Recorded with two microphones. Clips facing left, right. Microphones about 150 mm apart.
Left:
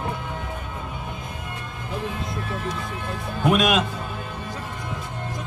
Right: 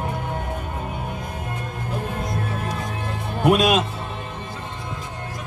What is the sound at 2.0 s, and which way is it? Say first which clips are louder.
Music: right 1 dB; 50° right (ahead or behind).